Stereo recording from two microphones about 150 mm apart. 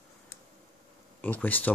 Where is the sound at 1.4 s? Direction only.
10° left (ahead or behind).